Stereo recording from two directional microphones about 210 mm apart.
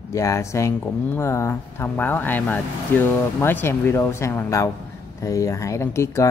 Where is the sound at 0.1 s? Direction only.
15° left (ahead or behind).